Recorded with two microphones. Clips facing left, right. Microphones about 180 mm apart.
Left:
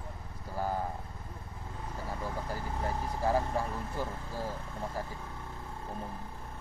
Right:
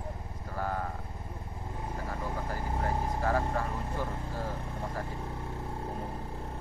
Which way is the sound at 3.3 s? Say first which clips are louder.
Left 2 dB; 15° left (ahead or behind).